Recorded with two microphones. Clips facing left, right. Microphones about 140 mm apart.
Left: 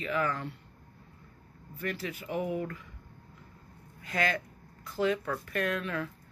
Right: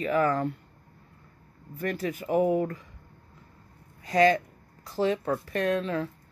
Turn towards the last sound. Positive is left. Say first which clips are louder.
# right 5 dB
turn(degrees=-30)  # may be behind; listen again after turning